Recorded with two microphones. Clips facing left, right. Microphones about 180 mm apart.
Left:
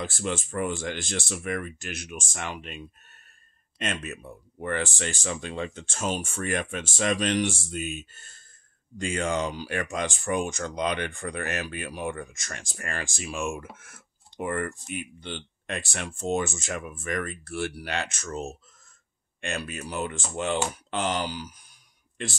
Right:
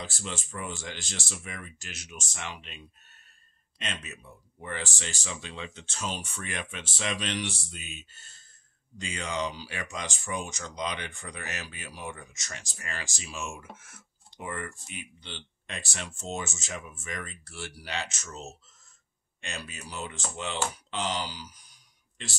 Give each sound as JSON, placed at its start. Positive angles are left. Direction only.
{"t": 0.0, "sound": "speech", "side_deg": 55}